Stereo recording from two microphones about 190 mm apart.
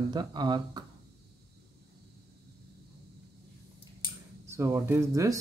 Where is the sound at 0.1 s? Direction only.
20° right (ahead or behind).